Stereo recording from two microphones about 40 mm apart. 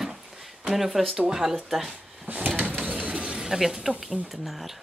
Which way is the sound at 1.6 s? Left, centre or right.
Centre.